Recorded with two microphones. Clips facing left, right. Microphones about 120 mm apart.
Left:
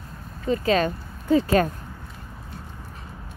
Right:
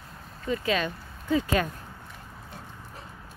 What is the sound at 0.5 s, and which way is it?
Speech, 40° left (ahead or behind).